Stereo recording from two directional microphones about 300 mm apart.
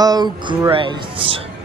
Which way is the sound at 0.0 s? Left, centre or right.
Centre.